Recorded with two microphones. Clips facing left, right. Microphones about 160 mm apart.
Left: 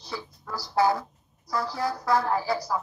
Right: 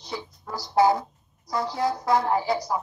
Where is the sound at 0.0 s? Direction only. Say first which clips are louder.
Right 2 dB; 20° right (ahead or behind).